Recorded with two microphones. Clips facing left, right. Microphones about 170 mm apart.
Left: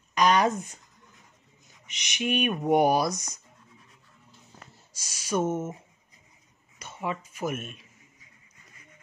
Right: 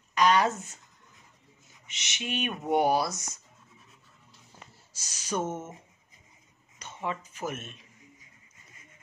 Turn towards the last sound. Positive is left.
turn(degrees=10)  # may be behind; listen again after turning